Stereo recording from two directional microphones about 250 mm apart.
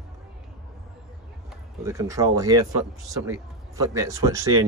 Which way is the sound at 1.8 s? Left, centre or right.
Centre.